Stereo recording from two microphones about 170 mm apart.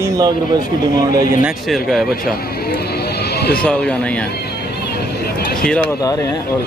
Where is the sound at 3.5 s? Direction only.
5° left (ahead or behind).